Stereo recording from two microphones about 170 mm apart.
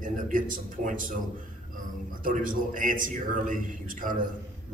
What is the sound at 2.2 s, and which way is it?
A man's voice, 50° right (ahead or behind).